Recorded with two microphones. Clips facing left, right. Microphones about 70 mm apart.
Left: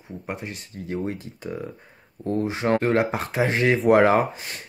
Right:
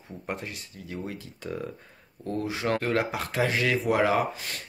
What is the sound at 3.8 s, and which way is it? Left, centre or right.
Speech, left.